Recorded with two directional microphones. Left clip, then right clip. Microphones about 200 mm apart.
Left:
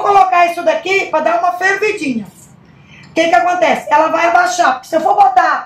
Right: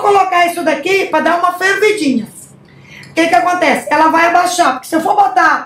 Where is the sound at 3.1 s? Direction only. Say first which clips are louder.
Even; 40° right (ahead or behind).